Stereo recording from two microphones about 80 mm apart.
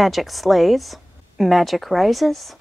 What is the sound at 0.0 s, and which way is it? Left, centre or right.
Speech, centre.